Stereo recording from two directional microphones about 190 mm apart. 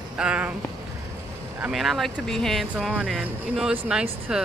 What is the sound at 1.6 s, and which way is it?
Speech, centre (ahead or behind).